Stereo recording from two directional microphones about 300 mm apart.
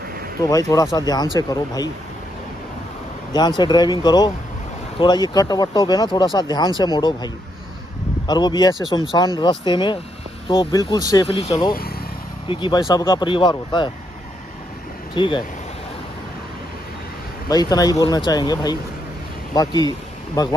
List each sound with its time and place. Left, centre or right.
0.4 s speech: centre
3.3 s speech: centre
8.3 s speech: centre
15.1 s speech: centre
17.5 s speech: centre